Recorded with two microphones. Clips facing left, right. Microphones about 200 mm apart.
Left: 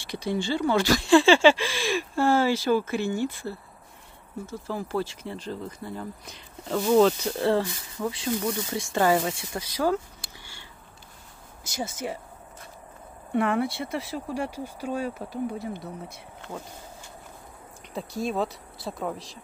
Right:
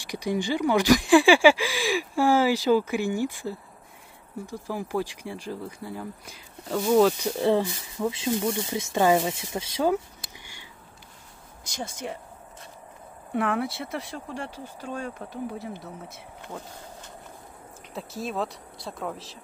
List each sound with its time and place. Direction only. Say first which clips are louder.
0.0 s speech: right 1 dB; 15° right (ahead or behind)
11.6 s speech: left 2 dB; 5° left (ahead or behind)
13.3 s speech: left 2 dB; centre (ahead or behind)
17.9 s speech: left 3 dB; centre (ahead or behind)